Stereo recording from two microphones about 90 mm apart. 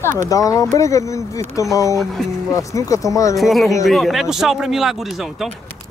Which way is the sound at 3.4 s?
Centre (ahead or behind).